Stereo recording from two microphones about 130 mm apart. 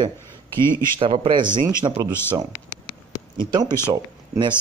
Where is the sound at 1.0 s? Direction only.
45° right (ahead or behind).